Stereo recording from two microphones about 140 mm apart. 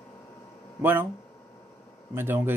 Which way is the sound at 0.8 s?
15° right (ahead or behind).